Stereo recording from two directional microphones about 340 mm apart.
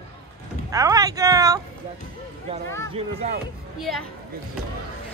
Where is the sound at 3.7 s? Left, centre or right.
Centre.